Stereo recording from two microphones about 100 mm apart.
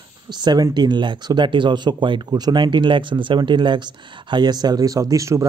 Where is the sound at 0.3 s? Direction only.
45° right (ahead or behind).